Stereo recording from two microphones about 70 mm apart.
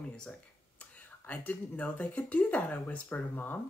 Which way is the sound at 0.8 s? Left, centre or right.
Left.